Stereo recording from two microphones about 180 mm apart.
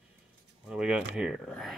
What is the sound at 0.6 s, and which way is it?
Speech, 5° right (ahead or behind).